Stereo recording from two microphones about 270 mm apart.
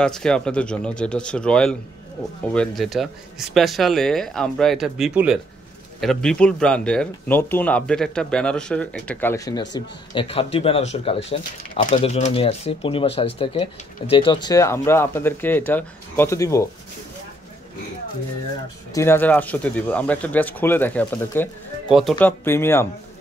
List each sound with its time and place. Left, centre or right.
0.0 s speech: centre
18.9 s speech: centre